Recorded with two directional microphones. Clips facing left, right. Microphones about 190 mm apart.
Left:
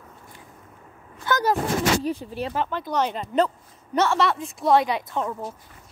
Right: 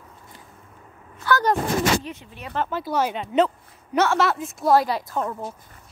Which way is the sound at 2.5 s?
5° right (ahead or behind).